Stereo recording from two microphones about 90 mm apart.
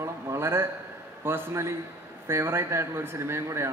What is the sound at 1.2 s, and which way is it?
A man's voice, 25° right (ahead or behind).